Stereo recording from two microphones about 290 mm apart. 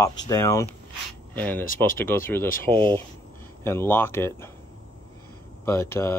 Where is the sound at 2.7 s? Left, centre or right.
Centre.